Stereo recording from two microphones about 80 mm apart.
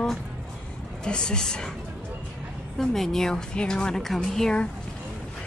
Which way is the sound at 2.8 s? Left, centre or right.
Centre.